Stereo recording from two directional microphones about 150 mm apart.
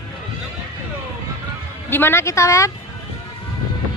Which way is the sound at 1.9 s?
15° left (ahead or behind).